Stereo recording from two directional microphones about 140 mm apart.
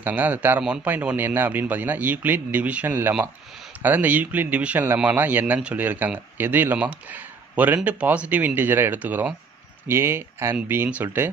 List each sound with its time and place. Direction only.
0.0 s speech: 15° right (ahead or behind)